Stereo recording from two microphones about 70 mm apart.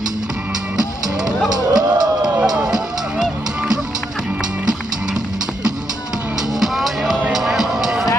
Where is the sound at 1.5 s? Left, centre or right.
Right.